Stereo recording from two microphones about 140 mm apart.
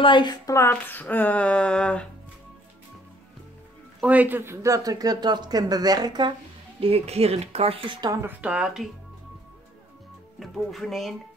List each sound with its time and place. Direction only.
0.0 s speech: 35° left (ahead or behind)
0.6 s speech: 15° left (ahead or behind)
4.0 s speech: 10° right (ahead or behind); by 6.3 s 30° right (ahead or behind)
6.8 s speech: 45° right (ahead or behind)
8.1 s speech: 15° right (ahead or behind)
8.5 s speech: 5° right (ahead or behind)
10.4 s speech: centre (ahead or behind)